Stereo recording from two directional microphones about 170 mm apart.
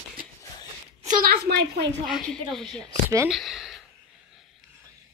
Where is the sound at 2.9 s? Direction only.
20° right (ahead or behind).